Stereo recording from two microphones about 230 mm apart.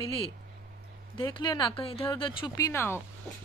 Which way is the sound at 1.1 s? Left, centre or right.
Left.